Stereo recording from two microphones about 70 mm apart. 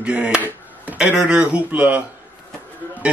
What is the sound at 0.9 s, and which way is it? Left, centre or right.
A man's voice, centre.